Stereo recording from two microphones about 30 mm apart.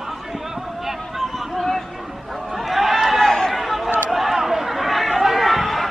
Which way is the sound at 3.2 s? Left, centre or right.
Left.